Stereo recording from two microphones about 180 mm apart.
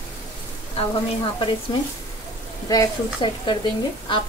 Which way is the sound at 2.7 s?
25° left (ahead or behind).